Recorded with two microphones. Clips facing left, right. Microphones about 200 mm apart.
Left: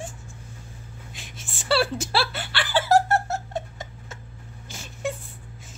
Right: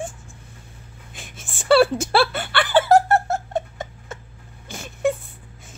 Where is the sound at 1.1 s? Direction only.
50° right (ahead or behind).